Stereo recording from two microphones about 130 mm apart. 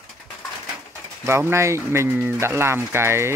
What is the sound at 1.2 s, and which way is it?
Speech, 20° right (ahead or behind).